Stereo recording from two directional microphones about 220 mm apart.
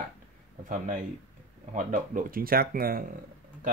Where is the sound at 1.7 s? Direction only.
35° right (ahead or behind).